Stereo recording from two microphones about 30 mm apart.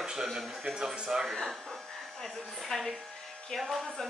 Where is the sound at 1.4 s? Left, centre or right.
Centre.